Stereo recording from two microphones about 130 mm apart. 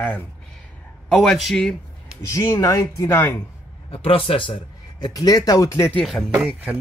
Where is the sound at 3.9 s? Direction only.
45° left (ahead or behind); by 5.9 s 25° left (ahead or behind).